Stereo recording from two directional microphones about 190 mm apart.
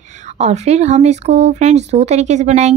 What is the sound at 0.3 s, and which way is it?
A woman's voice, 35° right (ahead or behind).